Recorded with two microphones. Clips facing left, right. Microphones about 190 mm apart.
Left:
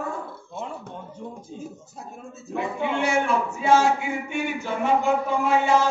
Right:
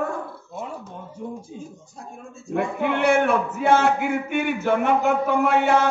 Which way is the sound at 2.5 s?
60° right (ahead or behind).